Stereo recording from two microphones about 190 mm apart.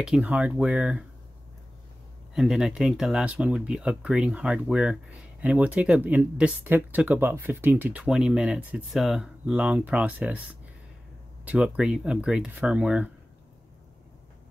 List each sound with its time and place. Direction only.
0.0 s speech: 5° right (ahead or behind)
2.3 s speech: 5° right (ahead or behind)